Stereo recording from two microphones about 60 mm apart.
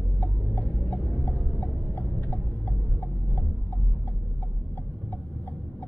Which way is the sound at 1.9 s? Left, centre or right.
Left.